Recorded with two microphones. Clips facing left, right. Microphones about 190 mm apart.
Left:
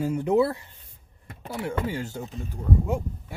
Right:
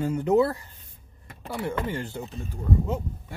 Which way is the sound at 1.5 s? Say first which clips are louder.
Even; 10° left (ahead or behind).